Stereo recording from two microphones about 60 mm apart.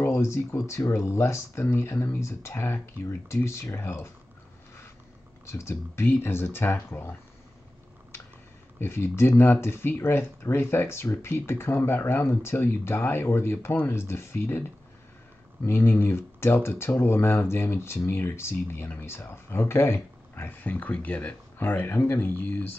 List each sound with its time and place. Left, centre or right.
0.0 s speech: left
5.5 s speech: left
6.0 s speech: left
8.7 s speech: left
15.6 s speech: left
21.9 s speech: left
22.2 s speech: left